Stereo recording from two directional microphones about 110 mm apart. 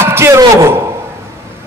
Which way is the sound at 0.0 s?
25° right (ahead or behind).